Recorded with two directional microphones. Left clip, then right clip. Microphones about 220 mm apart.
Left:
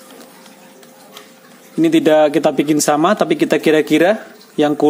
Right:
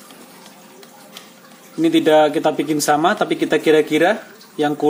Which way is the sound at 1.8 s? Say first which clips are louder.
Left 2 dB; 40° left (ahead or behind).